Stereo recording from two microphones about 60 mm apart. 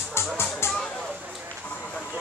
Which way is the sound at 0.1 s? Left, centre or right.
Left.